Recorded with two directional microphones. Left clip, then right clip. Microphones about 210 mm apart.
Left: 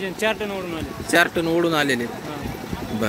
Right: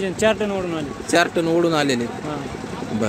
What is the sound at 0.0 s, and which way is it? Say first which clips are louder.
Speech: right 4 dB; 35° right (ahead or behind).